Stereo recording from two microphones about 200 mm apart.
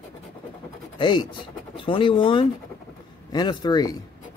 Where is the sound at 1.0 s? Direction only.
20° left (ahead or behind).